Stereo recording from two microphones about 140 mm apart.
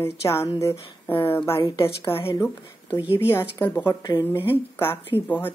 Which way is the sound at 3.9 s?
25° left (ahead or behind).